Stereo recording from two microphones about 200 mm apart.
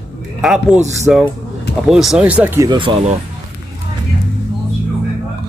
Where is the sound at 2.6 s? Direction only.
25° right (ahead or behind).